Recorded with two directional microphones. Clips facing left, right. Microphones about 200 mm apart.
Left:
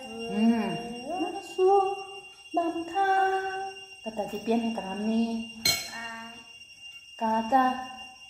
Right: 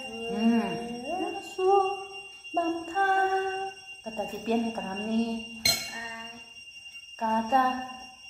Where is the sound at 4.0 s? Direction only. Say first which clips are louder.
Left 2 dB; 10° left (ahead or behind).